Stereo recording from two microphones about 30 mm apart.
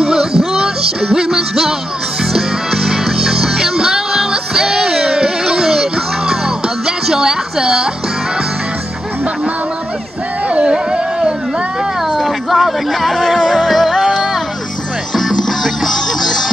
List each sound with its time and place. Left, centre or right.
0.0 s music: right
4.3 s music: right
5.6 s music: centre
10.5 s a sound: right
12.1 s a sound: centre
13.5 s music: centre
15.1 s music: centre